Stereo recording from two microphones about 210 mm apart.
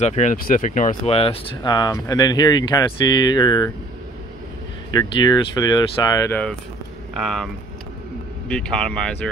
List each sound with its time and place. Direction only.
0.0 s speech: 35° left (ahead or behind)
4.9 s speech: 20° left (ahead or behind)
7.2 s speech: centre (ahead or behind)
8.5 s speech: 5° left (ahead or behind)